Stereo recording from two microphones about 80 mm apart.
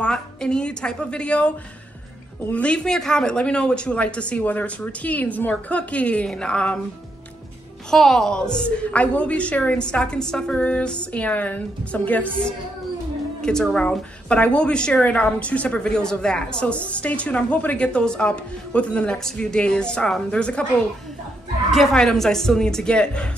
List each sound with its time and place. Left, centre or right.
0.0 s a woman's voice: centre
2.5 s a woman's voice: centre
7.9 s a woman's voice: centre
13.4 s a woman's voice: centre